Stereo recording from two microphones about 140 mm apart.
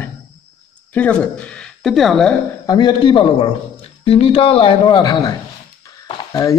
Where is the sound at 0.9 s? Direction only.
10° left (ahead or behind).